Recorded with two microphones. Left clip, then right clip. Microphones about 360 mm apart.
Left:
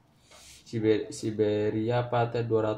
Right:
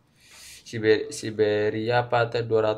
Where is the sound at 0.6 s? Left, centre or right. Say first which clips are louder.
Right 5 dB; right.